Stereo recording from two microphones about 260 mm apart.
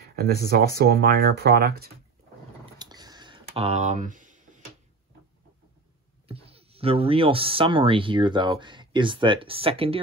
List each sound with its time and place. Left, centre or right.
0.1 s speech: right
2.8 s a sound: centre
6.2 s speech: right